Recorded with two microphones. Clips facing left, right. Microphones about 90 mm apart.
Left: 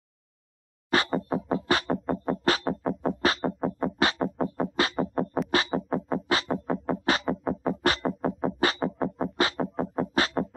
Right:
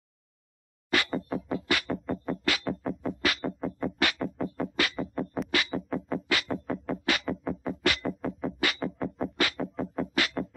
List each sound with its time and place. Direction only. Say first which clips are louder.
0.9 s music: left 3 dB; 30° left (ahead or behind)